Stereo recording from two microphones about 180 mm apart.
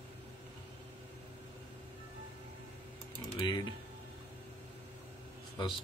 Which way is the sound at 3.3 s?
25° left (ahead or behind).